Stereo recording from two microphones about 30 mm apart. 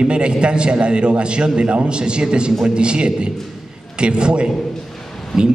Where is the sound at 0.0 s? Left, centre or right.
Right.